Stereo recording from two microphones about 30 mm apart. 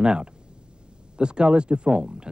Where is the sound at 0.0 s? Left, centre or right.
Right.